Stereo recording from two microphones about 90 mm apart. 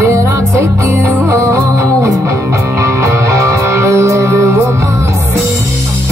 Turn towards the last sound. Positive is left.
turn(degrees=-35)  # may be behind; listen again after turning